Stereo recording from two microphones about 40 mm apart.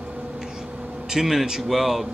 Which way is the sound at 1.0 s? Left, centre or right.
Centre.